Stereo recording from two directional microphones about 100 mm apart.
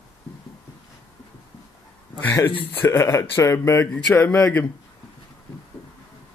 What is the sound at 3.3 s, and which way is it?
Speech, 30° left (ahead or behind).